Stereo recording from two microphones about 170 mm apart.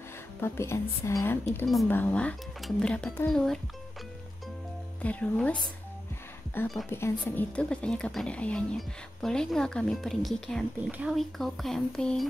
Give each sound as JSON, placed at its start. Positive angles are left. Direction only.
{"t": 0.4, "sound": "speech", "side_deg": 15}
{"t": 5.0, "sound": "speech", "side_deg": 10}